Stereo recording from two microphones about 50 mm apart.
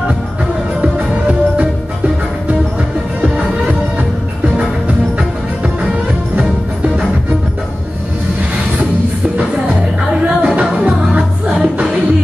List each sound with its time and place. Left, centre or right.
0.7 s music: right
10.4 s music: right